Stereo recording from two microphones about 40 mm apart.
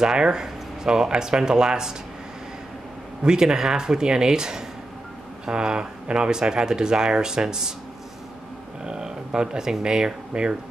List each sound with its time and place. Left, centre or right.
0.0 s speech: centre
3.3 s speech: centre
8.8 s speech: centre